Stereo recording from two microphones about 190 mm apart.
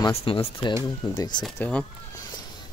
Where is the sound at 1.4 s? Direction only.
5° left (ahead or behind).